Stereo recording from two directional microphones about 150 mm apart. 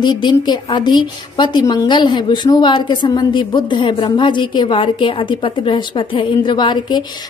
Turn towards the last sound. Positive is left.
turn(degrees=30)  # may be behind; listen again after turning